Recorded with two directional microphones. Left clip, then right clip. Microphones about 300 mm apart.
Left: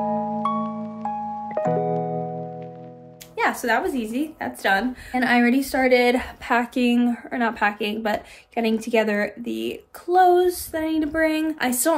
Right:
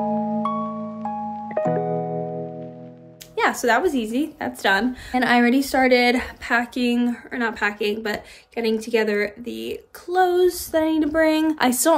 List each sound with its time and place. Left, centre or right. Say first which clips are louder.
0.0 s music: even; centre
3.3 s a woman's voice: right 2 dB; centre
10.4 s a sound: right 4 dB; centre